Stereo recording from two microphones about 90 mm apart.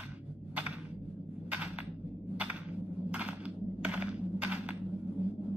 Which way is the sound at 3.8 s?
15° right (ahead or behind).